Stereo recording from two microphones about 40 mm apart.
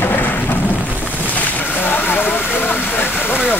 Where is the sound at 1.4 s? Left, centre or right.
Left.